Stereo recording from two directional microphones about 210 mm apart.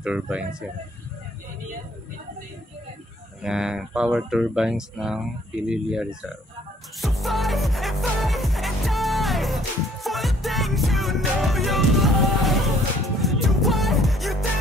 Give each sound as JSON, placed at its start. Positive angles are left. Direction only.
{"t": 0.0, "sound": "speech", "side_deg": -5}
{"t": 3.4, "sound": "speech", "side_deg": -5}
{"t": 7.0, "sound": "music", "side_deg": 0}